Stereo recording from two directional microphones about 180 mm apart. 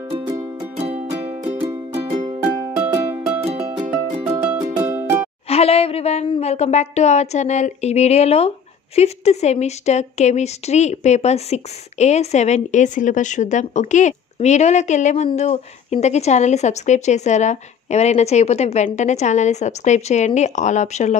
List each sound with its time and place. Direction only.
0.7 s music: 35° right (ahead or behind)
2.7 s music: 5° right (ahead or behind)
4.6 s music: 20° right (ahead or behind)
5.5 s a woman's voice: 35° left (ahead or behind)